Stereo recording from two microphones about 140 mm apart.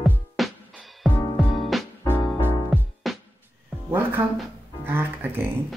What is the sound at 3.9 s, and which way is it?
Music, 15° right (ahead or behind).